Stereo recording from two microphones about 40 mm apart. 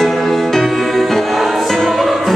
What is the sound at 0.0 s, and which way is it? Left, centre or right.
Music, centre.